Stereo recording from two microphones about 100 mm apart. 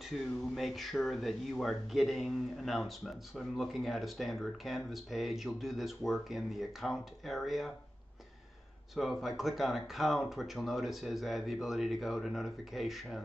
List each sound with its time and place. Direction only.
0.1 s speech: centre (ahead or behind)
8.9 s speech: centre (ahead or behind)